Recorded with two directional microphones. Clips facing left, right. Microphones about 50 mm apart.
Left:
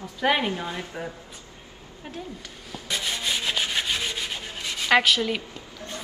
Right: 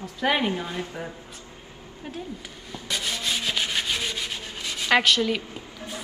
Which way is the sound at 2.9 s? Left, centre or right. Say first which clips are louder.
Even; centre.